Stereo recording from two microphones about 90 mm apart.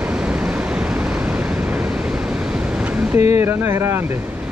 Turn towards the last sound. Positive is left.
turn(degrees=-30)  # may be behind; listen again after turning